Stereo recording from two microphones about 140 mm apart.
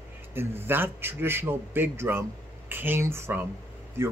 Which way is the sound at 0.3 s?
15° right (ahead or behind).